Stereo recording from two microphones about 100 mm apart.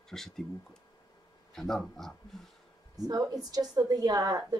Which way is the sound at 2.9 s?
40° right (ahead or behind).